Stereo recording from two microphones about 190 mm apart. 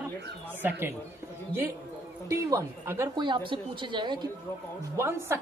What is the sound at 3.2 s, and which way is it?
Speech, 25° right (ahead or behind).